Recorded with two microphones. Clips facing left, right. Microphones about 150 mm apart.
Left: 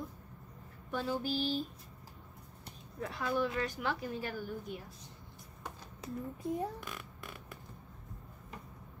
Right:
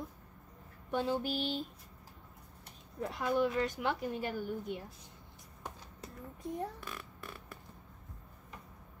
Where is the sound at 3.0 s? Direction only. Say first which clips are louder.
Right 2 dB; 20° right (ahead or behind).